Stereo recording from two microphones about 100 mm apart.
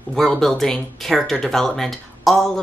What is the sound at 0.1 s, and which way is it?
Speech, 5° left (ahead or behind).